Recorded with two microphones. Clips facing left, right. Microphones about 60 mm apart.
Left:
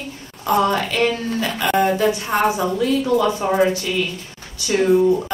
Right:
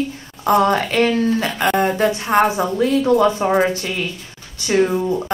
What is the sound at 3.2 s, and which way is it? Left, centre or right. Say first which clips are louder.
Speech: right 2 dB; right.